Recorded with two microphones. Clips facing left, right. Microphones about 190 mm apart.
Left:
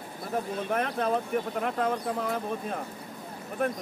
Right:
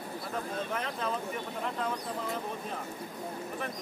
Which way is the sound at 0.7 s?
55° left (ahead or behind).